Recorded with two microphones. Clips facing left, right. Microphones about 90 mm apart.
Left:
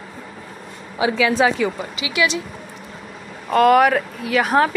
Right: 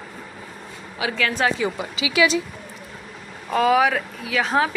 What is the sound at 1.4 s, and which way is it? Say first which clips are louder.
Speech: left 4 dB; 10° left (ahead or behind).